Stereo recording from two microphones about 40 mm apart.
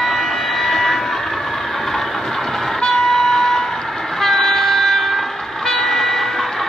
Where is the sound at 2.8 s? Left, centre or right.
Centre.